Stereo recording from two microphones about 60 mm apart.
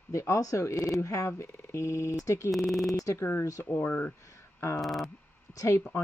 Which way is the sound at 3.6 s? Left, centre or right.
Left.